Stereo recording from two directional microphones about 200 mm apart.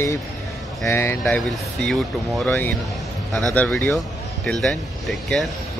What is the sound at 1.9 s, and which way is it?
Speech, centre (ahead or behind).